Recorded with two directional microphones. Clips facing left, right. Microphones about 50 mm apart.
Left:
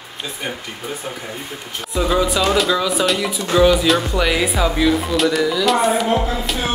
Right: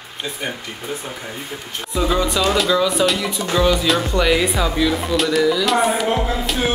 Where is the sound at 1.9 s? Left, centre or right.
Centre.